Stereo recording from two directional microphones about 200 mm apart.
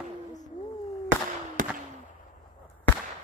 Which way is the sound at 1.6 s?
45° right (ahead or behind).